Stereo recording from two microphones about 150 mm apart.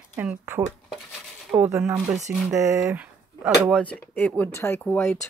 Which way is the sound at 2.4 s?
20° right (ahead or behind).